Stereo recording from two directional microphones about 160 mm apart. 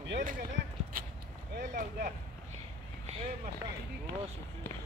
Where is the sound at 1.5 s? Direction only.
75° right (ahead or behind).